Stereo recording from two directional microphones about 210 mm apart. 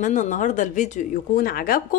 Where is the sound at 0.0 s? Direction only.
35° left (ahead or behind).